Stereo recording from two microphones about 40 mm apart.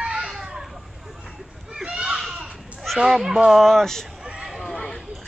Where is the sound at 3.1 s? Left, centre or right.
Centre.